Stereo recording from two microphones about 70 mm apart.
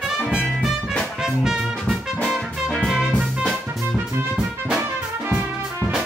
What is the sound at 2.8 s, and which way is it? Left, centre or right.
Music, centre.